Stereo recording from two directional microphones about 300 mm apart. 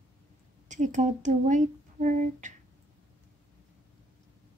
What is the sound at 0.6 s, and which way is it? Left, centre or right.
Speech, right.